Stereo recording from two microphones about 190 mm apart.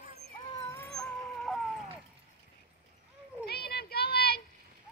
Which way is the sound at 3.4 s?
55° left (ahead or behind).